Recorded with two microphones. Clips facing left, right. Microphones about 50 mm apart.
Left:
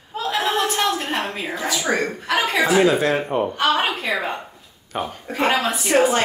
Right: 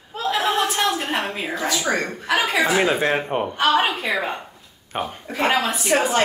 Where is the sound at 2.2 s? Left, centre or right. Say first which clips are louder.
Even; centre.